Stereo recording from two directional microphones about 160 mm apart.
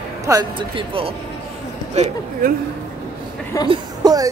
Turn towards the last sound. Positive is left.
turn(degrees=-25)  # may be behind; listen again after turning